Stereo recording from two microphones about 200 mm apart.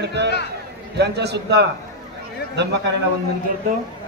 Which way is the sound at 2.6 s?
60° right (ahead or behind).